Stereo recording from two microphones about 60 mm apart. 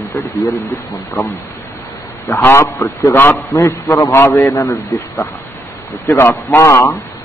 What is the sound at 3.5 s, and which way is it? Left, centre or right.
Speech, left.